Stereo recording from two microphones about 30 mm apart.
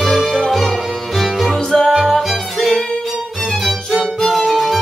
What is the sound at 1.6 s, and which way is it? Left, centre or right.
Music, left.